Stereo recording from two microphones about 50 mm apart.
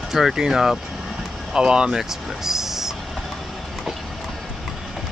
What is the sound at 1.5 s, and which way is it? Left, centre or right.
Speech, centre.